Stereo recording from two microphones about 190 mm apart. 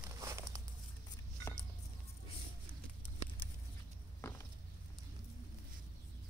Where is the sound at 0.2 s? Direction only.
15° right (ahead or behind).